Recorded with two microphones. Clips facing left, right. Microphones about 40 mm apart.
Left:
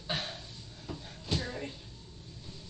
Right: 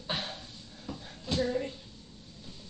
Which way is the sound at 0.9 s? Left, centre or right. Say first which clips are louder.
Right 1 dB; left.